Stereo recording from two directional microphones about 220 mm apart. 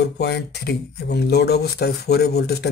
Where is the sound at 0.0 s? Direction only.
50° left (ahead or behind).